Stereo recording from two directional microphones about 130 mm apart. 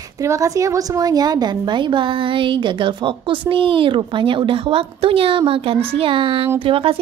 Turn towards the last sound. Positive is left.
turn(degrees=-45)  # may be behind; listen again after turning